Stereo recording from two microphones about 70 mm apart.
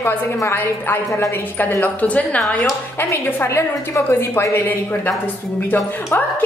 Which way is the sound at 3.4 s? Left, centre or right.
Left.